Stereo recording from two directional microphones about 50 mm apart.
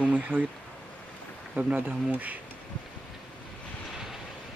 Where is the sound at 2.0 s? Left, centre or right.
Right.